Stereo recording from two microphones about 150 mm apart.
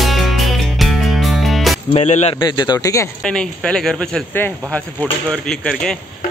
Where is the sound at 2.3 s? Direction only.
30° left (ahead or behind).